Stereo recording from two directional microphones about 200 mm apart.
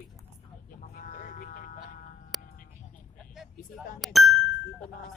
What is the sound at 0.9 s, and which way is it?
Vehicle, 45° left (ahead or behind).